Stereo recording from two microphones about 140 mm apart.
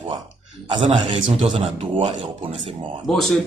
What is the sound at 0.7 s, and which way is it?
Speech, 35° right (ahead or behind).